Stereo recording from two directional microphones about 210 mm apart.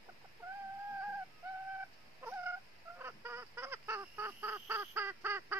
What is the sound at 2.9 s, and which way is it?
Fowl, 10° right (ahead or behind).